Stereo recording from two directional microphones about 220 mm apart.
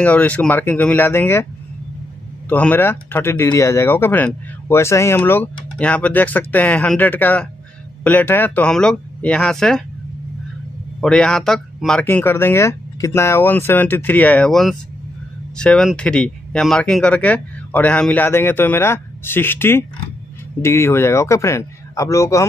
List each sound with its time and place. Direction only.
0.0 s speech: 5° left (ahead or behind)
2.5 s speech: 10° left (ahead or behind)
11.0 s speech: 5° left (ahead or behind)